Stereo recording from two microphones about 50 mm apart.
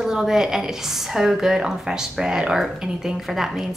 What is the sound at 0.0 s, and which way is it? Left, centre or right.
A woman's voice, centre.